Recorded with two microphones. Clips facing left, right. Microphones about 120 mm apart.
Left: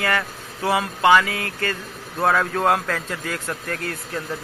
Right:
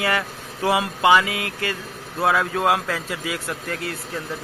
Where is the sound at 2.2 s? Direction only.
5° right (ahead or behind).